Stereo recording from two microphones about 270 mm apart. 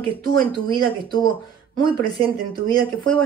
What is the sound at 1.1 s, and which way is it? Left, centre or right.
Speech, centre.